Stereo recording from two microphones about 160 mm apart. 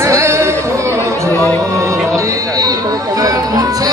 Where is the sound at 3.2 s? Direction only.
20° right (ahead or behind).